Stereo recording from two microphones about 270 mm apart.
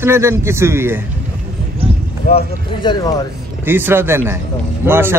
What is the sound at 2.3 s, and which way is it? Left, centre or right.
Speech, centre.